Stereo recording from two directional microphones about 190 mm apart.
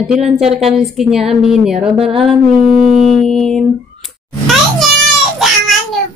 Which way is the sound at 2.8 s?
40° right (ahead or behind).